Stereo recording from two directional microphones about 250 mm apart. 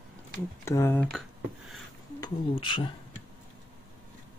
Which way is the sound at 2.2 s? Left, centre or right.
Centre.